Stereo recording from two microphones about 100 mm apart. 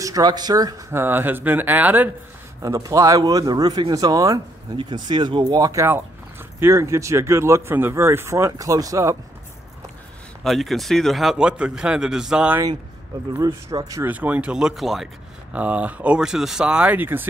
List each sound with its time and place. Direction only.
0.0 s speech: 40° right (ahead or behind)
0.9 s speech: 20° right (ahead or behind)
2.6 s speech: 35° right (ahead or behind)
4.7 s speech: 50° right (ahead or behind)
10.4 s a man's voice: centre (ahead or behind)
13.4 s speech: 35° right (ahead or behind)
14.0 s speech: 15° right (ahead or behind)
15.5 s speech: 15° right (ahead or behind)